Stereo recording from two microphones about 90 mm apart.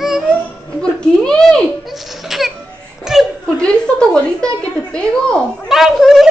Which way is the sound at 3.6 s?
10° left (ahead or behind).